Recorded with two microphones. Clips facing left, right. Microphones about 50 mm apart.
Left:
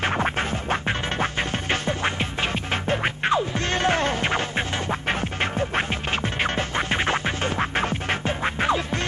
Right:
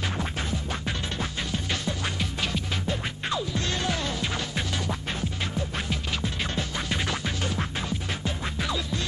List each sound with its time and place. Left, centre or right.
0.0 s music: left